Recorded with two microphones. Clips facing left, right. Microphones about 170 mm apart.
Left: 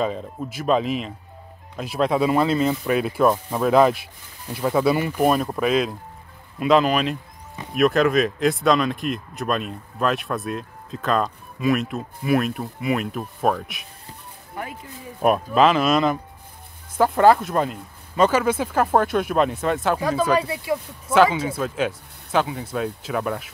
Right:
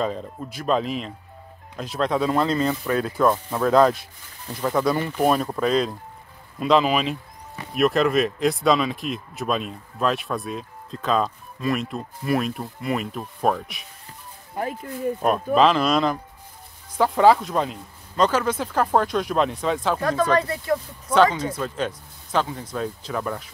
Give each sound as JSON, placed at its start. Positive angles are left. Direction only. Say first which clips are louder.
{"t": 0.0, "sound": "speech", "louder": "left 1 dB", "side_deg": 5}
{"t": 14.5, "sound": "speech", "louder": "right 5 dB", "side_deg": -35}
{"t": 15.2, "sound": "speech", "louder": "left 2 dB", "side_deg": 5}